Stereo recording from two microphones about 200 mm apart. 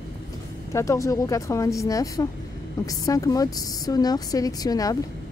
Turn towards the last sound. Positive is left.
turn(degrees=20)  # may be behind; listen again after turning